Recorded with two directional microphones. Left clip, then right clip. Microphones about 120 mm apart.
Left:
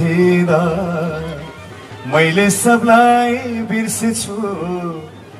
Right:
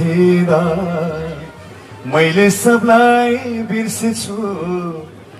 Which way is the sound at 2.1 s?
35° left (ahead or behind).